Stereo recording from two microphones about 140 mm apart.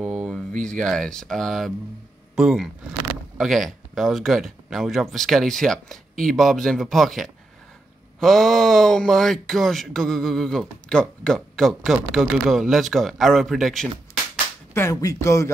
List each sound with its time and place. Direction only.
0.0 s a sound: centre (ahead or behind)
0.7 s speech: 5° left (ahead or behind)
14.7 s a man's voice: 20° left (ahead or behind)